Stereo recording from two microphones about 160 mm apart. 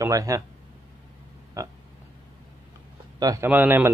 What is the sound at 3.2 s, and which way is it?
Speech, 25° right (ahead or behind).